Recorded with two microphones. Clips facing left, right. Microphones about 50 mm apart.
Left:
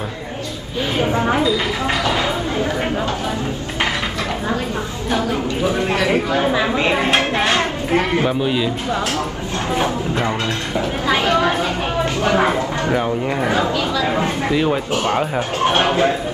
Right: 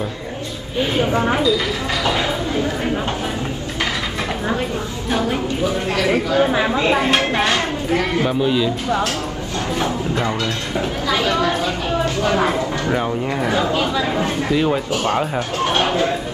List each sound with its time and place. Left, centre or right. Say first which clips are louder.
5.7 s speech: left 2 dB; left
7.5 s a child's voice: left 1 dB; left
8.3 s a man's voice: right 1 dB; centre
9.8 s speech: left 1 dB; left
12.9 s speech: left 2 dB; centre
14.5 s a man's voice: even; centre
15.6 s speech: left 3 dB; left